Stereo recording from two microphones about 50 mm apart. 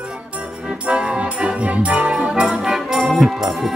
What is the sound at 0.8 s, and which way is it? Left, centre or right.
Music, right.